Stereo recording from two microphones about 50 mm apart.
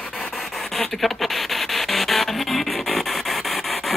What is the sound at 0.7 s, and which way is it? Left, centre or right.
Rub, centre.